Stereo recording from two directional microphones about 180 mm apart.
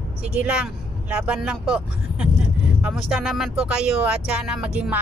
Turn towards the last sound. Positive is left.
turn(degrees=-5)  # may be behind; listen again after turning